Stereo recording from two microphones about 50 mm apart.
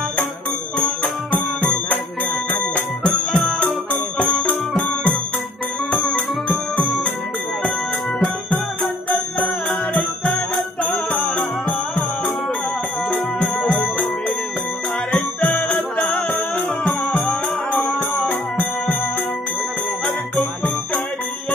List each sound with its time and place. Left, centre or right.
2.7 s music: left
4.5 s music: left
15.0 s music: left